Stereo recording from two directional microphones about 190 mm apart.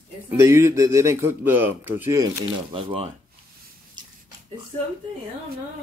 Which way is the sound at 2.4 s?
30° right (ahead or behind).